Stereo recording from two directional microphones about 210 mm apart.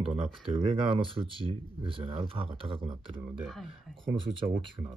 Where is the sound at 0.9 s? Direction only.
25° right (ahead or behind).